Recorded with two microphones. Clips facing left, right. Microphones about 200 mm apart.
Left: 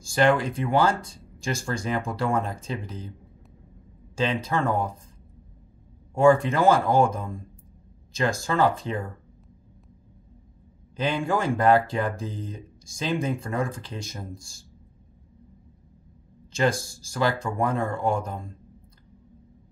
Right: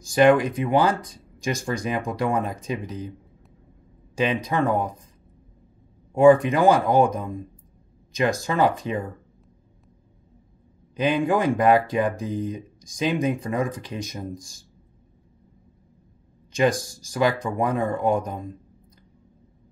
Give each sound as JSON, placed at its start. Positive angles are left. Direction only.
{"t": 0.0, "sound": "speech", "side_deg": -15}
{"t": 6.1, "sound": "speech", "side_deg": -15}
{"t": 11.0, "sound": "speech", "side_deg": -15}
{"t": 16.5, "sound": "speech", "side_deg": -15}